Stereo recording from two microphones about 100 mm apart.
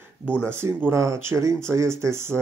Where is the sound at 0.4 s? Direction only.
25° right (ahead or behind).